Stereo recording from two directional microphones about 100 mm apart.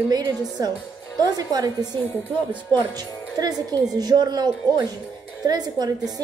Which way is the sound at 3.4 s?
40° right (ahead or behind).